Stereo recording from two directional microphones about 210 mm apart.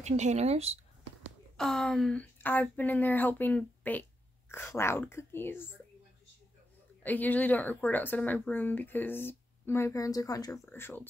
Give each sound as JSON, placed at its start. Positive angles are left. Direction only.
{"t": 0.0, "sound": "speech", "side_deg": -35}
{"t": 1.6, "sound": "a woman's voice", "side_deg": 0}
{"t": 7.0, "sound": "a woman's voice", "side_deg": 10}